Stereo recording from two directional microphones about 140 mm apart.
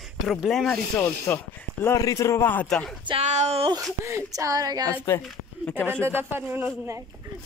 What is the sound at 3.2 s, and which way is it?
Speech, 55° right (ahead or behind).